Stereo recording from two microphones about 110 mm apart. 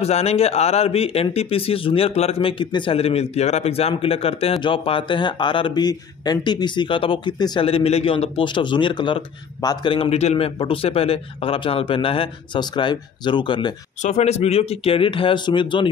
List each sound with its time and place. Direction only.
0.0 s a man's voice: 70° left (ahead or behind); by 7.6 s 40° left (ahead or behind)
7.6 s a man's voice: 65° left (ahead or behind); by 9.9 s 45° left (ahead or behind)
9.9 s a man's voice: 70° left (ahead or behind); by 13.7 s 45° left (ahead or behind)
14.0 s a man's voice: 80° left; by 15.9 s 50° left (ahead or behind)